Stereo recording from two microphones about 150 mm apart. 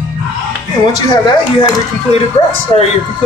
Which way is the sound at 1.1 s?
25° left (ahead or behind).